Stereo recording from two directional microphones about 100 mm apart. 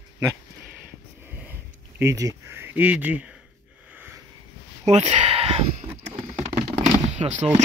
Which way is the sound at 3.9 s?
20° right (ahead or behind).